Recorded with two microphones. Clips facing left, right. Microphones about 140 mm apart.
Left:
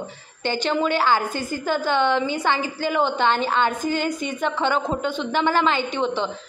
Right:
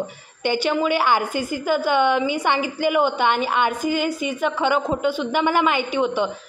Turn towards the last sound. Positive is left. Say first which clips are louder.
# right 3 dB
turn(degrees=-10)  # may be behind; listen again after turning